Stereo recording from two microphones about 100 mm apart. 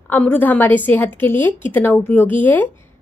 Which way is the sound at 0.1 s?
20° left (ahead or behind).